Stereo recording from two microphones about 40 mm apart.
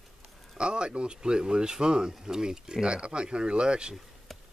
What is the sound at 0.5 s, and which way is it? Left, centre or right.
Speech, right.